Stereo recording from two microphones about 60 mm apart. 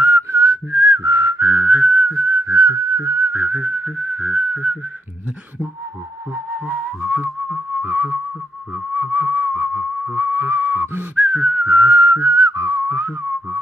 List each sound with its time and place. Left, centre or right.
0.0 s whistling: right
2.3 s whistling: right
2.6 s whistling: right
3.3 s whistling: right
6.6 s whistling: right
7.8 s a sound: right
8.9 s whistling: right
12.3 s whistling: right
12.9 s whistling: right